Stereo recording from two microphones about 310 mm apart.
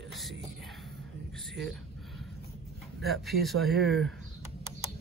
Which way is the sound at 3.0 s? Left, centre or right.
Centre.